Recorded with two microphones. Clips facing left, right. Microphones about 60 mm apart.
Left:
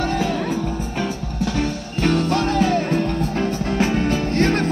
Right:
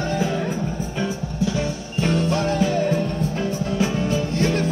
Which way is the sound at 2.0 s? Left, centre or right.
Left.